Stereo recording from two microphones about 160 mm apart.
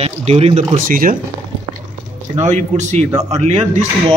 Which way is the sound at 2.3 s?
45° right (ahead or behind).